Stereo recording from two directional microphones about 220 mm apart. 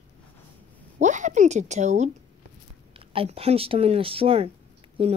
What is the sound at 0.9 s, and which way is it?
A woman's voice, 35° right (ahead or behind).